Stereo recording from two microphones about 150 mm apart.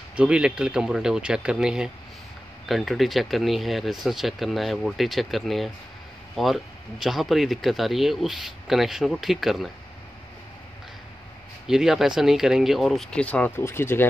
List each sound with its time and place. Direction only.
0.1 s speech: 10° right (ahead or behind)
11.6 s speech: 5° right (ahead or behind); by 14.0 s 15° left (ahead or behind)